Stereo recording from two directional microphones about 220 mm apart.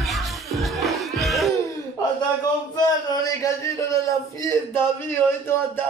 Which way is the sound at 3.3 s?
15° left (ahead or behind).